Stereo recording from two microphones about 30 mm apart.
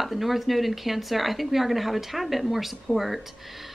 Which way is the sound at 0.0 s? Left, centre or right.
Centre.